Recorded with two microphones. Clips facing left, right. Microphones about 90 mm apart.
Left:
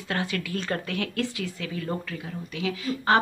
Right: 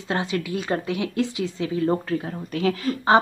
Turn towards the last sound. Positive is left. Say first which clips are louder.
# right 4 dB
turn(degrees=-20)  # may be behind; listen again after turning